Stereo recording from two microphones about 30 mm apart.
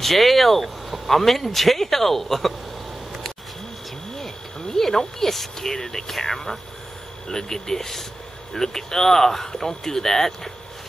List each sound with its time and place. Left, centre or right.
0.0 s speech: centre
4.2 s speech: centre